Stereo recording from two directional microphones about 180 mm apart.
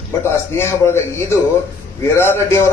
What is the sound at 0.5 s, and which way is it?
A man's voice, 15° left (ahead or behind).